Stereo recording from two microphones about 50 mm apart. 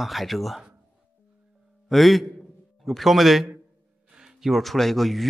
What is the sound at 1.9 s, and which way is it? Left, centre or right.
A man's voice, centre.